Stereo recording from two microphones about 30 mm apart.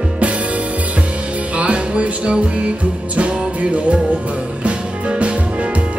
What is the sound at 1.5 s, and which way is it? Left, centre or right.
Music, right.